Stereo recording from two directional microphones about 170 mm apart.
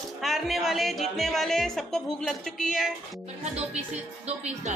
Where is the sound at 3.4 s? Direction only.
40° right (ahead or behind).